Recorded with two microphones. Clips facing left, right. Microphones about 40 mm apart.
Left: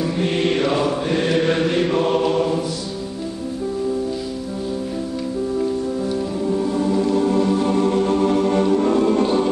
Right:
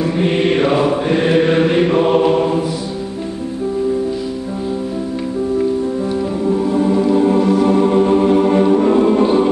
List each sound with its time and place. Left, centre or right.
0.0 s mantra: centre
6.4 s music: centre